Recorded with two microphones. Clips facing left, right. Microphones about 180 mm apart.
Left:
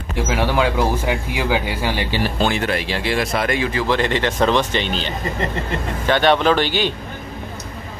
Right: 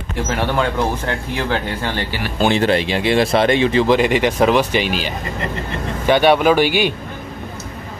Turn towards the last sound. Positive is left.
turn(degrees=-10)  # may be behind; listen again after turning